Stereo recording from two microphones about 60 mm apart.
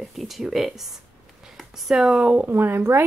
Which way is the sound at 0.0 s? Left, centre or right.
Centre.